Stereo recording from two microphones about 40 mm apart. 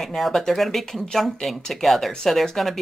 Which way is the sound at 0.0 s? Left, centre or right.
Centre.